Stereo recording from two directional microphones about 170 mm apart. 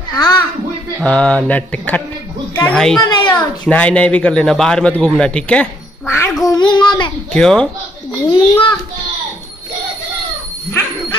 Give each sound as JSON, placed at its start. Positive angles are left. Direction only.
{"t": 0.1, "sound": "a sound", "side_deg": 25}
{"t": 0.9, "sound": "a child's voice", "side_deg": 5}
{"t": 7.3, "sound": "speech", "side_deg": 5}
{"t": 8.3, "sound": "a child's voice", "side_deg": 30}